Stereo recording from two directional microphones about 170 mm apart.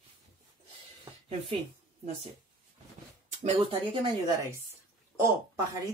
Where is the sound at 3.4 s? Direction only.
35° right (ahead or behind).